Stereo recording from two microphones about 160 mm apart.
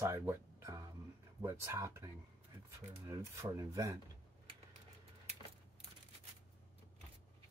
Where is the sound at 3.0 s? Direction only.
15° right (ahead or behind).